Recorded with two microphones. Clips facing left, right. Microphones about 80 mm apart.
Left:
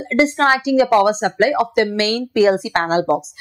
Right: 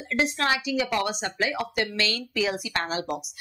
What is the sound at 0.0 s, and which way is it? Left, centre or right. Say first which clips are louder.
Speech: left 10 dB; left.